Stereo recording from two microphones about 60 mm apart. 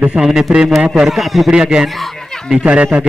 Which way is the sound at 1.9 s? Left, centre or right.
Centre.